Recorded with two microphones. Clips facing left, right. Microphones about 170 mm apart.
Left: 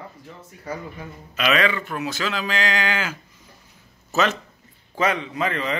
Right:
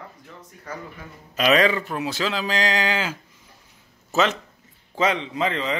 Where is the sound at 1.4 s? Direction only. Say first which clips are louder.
Right 3 dB; 35° right (ahead or behind).